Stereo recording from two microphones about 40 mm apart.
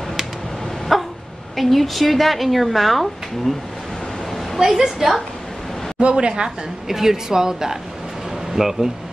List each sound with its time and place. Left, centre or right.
0.9 s dog: centre
1.6 s speech: centre
4.6 s a woman's voice: centre
5.9 s a woman's voice: right; by 8.9 s centre